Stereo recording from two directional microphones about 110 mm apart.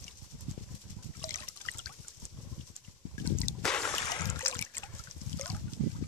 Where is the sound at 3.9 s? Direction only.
35° left (ahead or behind).